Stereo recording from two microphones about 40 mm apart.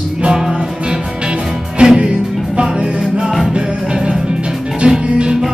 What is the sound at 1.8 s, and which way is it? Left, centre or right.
Music, right.